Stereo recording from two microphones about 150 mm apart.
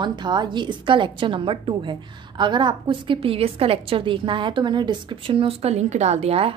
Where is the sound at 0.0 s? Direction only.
30° right (ahead or behind).